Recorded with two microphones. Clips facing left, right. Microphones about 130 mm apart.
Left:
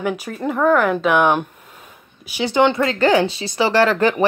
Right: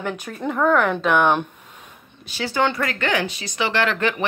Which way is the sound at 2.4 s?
20° left (ahead or behind).